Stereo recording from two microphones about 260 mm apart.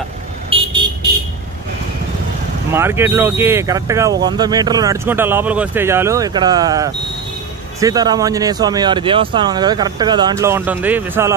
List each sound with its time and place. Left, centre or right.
0.5 s vehicle: right
2.7 s speech: centre